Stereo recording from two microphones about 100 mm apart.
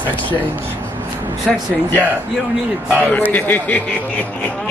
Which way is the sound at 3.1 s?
15° left (ahead or behind).